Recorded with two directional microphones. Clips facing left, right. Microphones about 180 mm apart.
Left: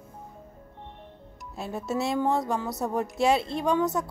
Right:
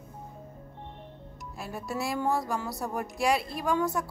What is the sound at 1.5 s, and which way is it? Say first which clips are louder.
A woman's voice: left 5 dB; 20° left (ahead or behind).